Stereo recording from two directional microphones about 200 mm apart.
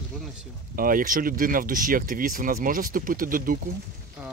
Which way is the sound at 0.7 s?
45° right (ahead or behind).